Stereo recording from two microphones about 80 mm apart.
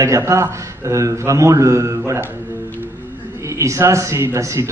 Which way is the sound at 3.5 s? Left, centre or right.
Right.